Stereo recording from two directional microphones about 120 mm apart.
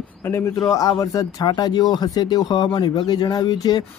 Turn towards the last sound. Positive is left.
turn(degrees=35)  # may be behind; listen again after turning